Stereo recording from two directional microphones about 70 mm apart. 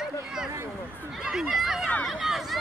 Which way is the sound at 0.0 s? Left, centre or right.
Centre.